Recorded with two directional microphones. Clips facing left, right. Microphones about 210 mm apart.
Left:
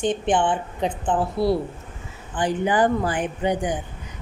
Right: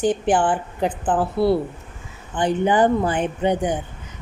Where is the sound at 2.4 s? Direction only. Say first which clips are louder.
Right 3 dB; 25° right (ahead or behind).